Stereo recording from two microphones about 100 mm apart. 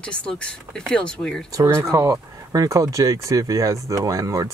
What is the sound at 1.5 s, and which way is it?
Speech, 30° right (ahead or behind).